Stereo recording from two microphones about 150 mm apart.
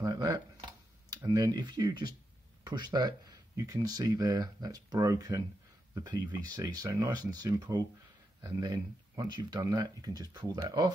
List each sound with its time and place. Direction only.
0.0 s camera: 25° right (ahead or behind)
1.1 s speech: 25° right (ahead or behind)